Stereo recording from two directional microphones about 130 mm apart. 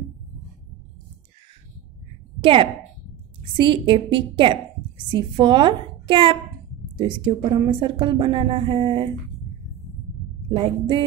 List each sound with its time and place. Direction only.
2.4 s a woman's voice: 45° right (ahead or behind)
10.5 s a woman's voice: 40° right (ahead or behind)